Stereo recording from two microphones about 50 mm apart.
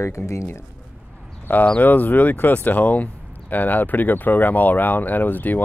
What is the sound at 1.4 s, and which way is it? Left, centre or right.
Speech, left.